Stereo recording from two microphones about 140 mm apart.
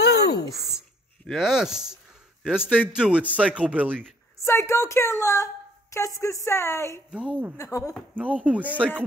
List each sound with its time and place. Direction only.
0.5 s a sound: centre (ahead or behind)
2.4 s speech: 5° right (ahead or behind)
4.4 s a woman's voice: 20° left (ahead or behind)
7.1 s speech: 10° right (ahead or behind)
7.5 s a woman's voice: 25° left (ahead or behind)
8.2 s speech: 10° right (ahead or behind)